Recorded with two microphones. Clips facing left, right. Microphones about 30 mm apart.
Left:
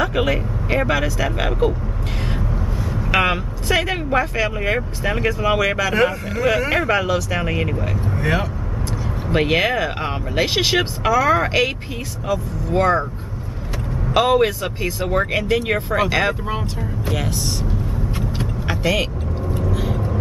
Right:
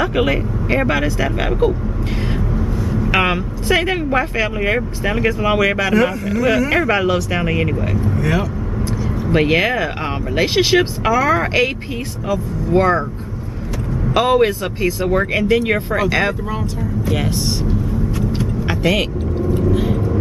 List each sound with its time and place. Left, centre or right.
0.0 s speech: centre
6.9 s speech: centre
8.2 s speech: left
9.3 s speech: centre
14.0 s speech: centre
18.7 s vehicle: centre